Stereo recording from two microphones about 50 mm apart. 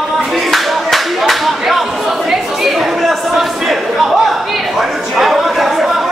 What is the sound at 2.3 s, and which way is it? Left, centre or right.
Chatter, centre.